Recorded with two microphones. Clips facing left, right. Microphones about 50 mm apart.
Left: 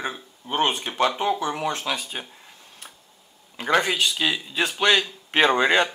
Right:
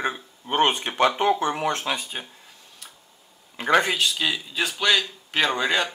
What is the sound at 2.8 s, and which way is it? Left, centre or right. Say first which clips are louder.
Tick-tock: left 2 dB; centre.